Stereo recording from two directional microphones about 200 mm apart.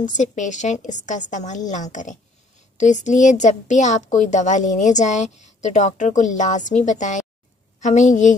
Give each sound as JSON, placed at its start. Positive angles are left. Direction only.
{"t": 0.0, "sound": "a woman's voice", "side_deg": 40}